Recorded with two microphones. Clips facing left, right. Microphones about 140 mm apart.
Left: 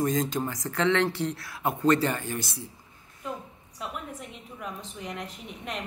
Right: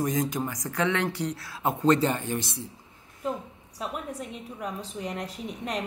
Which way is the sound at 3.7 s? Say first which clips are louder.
Right 3 dB; 35° right (ahead or behind).